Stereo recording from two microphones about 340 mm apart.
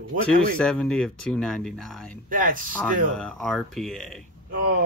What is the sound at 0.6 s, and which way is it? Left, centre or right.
Speech, centre.